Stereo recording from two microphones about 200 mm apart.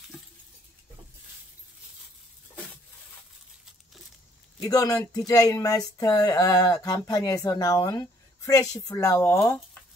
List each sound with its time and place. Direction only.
4.6 s speech: 15° left (ahead or behind)